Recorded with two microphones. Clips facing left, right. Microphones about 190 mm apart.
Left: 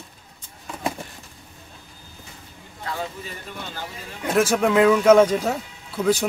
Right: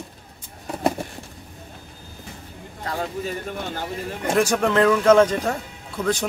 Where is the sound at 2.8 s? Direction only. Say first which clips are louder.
Right 4 dB; 45° right (ahead or behind).